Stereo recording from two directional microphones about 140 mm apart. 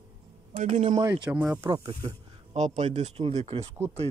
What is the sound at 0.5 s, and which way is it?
Speech, 45° right (ahead or behind).